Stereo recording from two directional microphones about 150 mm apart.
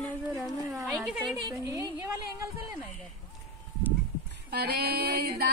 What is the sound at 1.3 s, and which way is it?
Speech, 25° right (ahead or behind).